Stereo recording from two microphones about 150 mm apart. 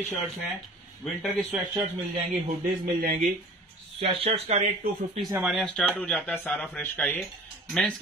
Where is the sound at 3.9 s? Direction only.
40° right (ahead or behind).